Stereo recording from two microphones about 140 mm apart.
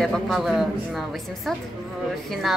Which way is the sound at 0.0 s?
Centre (ahead or behind).